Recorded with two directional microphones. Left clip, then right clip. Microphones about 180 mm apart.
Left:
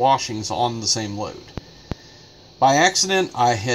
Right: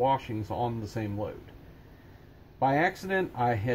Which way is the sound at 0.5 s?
20° left (ahead or behind).